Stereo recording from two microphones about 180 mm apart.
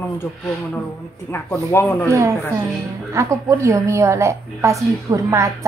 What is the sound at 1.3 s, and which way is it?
Speech, 15° left (ahead or behind).